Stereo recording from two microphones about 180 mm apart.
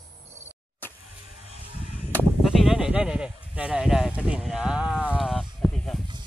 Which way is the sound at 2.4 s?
Centre (ahead or behind).